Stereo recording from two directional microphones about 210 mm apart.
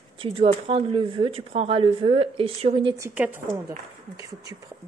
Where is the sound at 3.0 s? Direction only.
10° right (ahead or behind).